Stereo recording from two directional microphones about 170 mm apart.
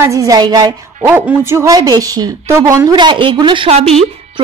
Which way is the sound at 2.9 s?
30° right (ahead or behind).